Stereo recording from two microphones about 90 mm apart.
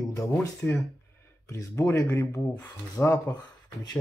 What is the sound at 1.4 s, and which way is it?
Speech, 30° left (ahead or behind).